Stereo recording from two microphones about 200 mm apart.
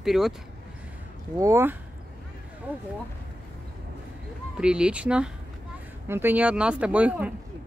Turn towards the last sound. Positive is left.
turn(degrees=-5)  # may be behind; listen again after turning